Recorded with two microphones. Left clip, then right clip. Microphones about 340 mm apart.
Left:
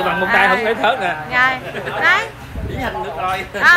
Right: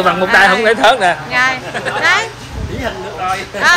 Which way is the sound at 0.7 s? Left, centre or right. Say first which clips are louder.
Right 7 dB; right.